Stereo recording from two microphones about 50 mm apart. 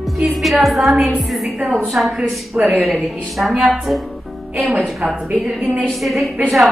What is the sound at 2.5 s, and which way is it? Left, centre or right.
Speech, right.